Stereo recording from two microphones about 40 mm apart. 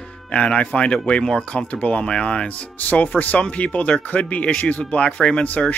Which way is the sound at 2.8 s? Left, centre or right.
Left.